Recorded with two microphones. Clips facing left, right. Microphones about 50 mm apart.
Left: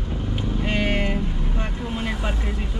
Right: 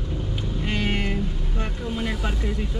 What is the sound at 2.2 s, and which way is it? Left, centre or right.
Speech, centre.